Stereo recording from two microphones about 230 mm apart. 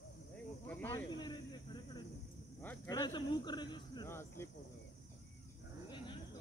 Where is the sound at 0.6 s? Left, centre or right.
Centre.